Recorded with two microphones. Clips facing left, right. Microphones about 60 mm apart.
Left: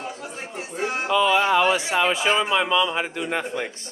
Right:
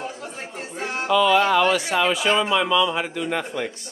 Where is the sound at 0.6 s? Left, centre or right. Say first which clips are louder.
Left 2 dB; centre.